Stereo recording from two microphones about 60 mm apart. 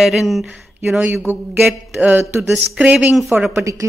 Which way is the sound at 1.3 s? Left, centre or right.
Right.